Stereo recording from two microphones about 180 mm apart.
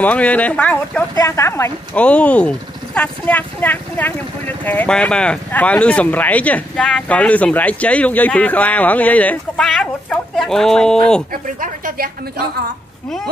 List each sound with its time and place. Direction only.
0.0 s speech: 10° left (ahead or behind)
11.6 s a woman's voice: 50° right (ahead or behind)